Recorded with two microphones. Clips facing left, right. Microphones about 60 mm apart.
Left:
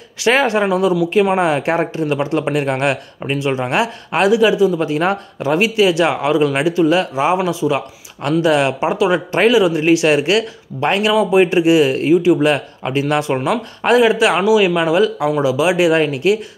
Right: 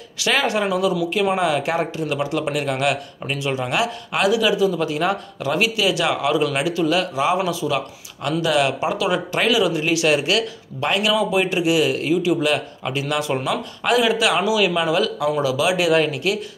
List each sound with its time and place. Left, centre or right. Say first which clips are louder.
0.2 s speech: left 6 dB; left